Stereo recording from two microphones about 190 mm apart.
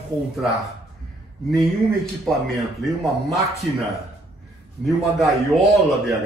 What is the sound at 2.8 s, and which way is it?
Speech, centre (ahead or behind).